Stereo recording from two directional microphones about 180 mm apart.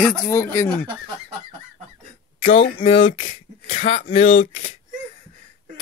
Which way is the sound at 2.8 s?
30° left (ahead or behind).